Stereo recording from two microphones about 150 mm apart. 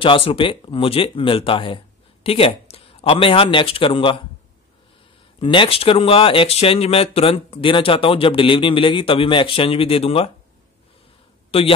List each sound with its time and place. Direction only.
0.0 s speech: 35° left (ahead or behind)
5.4 s speech: 35° left (ahead or behind)
11.5 s speech: 40° left (ahead or behind)